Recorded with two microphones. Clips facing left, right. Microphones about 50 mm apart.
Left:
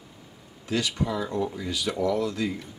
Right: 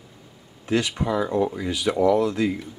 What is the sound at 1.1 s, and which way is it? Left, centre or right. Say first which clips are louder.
A man's voice: right 6 dB; right.